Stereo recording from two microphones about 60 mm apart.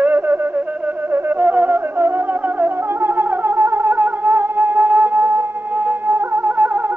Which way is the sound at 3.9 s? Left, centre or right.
Right.